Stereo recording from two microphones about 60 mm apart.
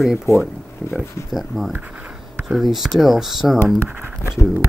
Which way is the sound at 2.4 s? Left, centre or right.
Centre.